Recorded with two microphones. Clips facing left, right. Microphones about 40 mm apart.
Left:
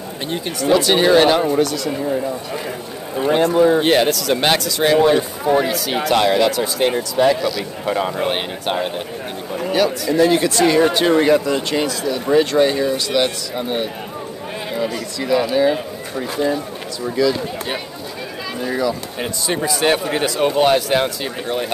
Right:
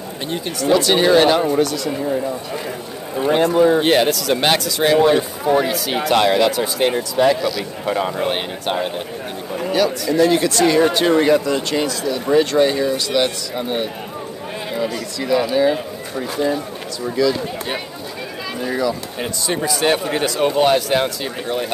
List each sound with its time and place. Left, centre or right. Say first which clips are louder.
0.3 s speech: even; centre
3.3 s speech: even; centre
6.0 s speech: even; centre
7.2 s speech: even; centre
8.2 s speech: even; centre
19.1 s speech: even; centre